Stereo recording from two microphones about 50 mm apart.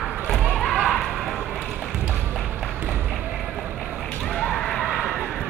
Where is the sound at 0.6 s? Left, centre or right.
Centre.